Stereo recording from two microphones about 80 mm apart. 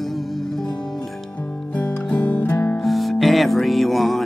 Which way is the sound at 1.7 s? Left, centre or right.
Centre.